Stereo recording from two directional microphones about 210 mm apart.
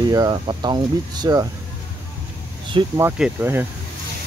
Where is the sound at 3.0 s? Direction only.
10° right (ahead or behind).